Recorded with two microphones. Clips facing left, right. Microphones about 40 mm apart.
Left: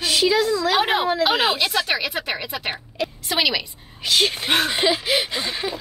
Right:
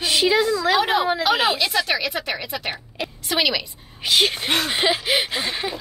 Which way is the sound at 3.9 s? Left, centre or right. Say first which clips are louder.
Right 1 dB; centre.